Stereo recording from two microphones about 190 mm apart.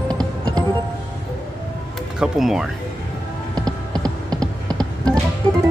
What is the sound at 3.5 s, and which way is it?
Music, 20° right (ahead or behind).